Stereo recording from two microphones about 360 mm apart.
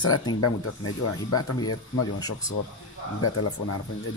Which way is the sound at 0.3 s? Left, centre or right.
Left.